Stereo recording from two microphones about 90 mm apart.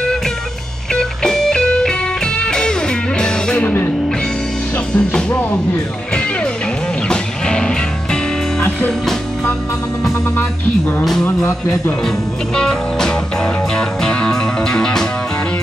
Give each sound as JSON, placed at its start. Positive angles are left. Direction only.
{"t": 0.9, "sound": "music", "side_deg": 5}
{"t": 4.9, "sound": "music", "side_deg": 15}
{"t": 7.1, "sound": "music", "side_deg": 10}
{"t": 11.2, "sound": "speech", "side_deg": 30}
{"t": 12.5, "sound": "music", "side_deg": 10}